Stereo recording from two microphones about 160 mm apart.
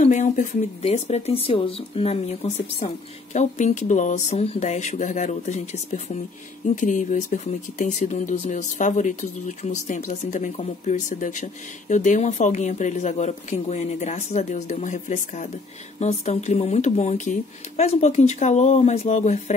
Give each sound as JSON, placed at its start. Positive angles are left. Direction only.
{"t": 0.0, "sound": "speech", "side_deg": 50}